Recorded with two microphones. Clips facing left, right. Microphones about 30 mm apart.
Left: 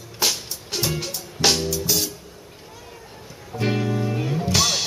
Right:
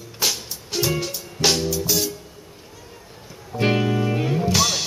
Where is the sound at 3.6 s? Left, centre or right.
Right.